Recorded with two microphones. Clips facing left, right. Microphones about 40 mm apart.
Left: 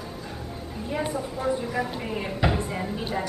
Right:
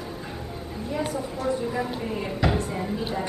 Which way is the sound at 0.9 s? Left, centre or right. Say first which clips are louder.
Even; centre.